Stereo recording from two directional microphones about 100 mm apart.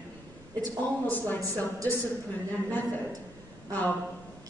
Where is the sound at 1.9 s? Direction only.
20° left (ahead or behind).